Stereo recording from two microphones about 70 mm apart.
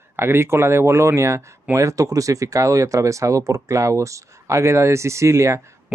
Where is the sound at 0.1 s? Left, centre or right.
Right.